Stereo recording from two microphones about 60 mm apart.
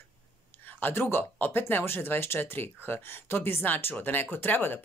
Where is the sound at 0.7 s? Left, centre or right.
Left.